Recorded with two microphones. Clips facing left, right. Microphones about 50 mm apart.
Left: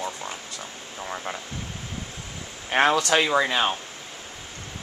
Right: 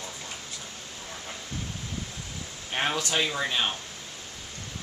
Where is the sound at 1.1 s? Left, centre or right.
Left.